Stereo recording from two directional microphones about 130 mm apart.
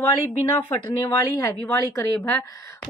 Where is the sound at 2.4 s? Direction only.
25° left (ahead or behind).